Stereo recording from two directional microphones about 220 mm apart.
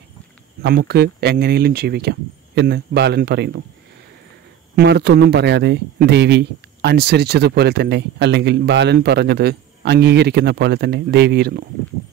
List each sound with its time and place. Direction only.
0.6 s speech: 45° right (ahead or behind)
4.7 s speech: 50° right (ahead or behind)